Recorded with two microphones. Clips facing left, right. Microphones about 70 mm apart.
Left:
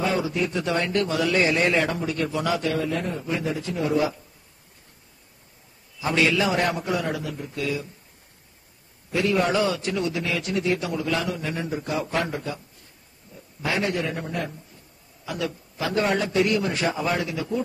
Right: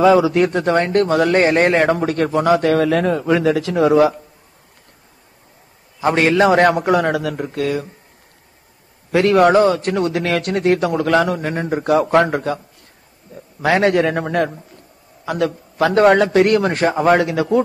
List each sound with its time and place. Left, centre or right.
0.2 s a man's voice: right
5.9 s a man's voice: right
9.1 s a man's voice: right
15.2 s a man's voice: right